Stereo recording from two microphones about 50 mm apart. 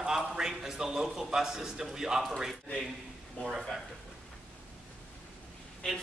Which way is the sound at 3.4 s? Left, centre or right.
Left.